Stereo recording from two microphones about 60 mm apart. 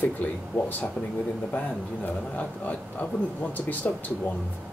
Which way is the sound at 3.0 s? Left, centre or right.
Left.